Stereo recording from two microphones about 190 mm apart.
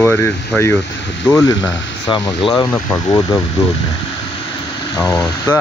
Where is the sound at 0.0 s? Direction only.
10° left (ahead or behind).